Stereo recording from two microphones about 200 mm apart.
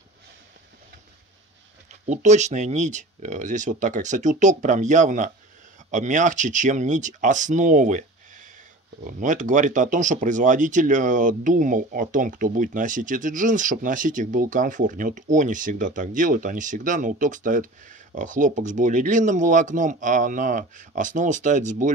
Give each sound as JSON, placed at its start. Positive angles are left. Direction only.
{"t": 2.0, "sound": "speech", "side_deg": -35}